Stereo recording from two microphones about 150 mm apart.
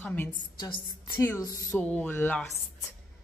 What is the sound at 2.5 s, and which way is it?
Speech, centre (ahead or behind).